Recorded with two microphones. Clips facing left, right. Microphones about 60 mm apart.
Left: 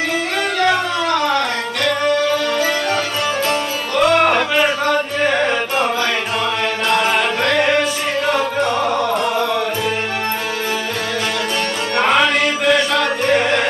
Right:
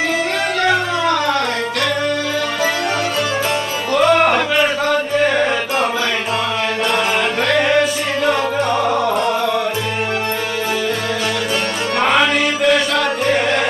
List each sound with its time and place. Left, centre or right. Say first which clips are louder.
0.6 s music: even; centre
3.4 s music: even; centre
6.9 s music: left 3 dB; centre
12.0 s music: even; centre